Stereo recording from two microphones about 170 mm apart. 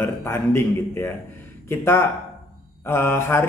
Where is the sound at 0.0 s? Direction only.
15° left (ahead or behind).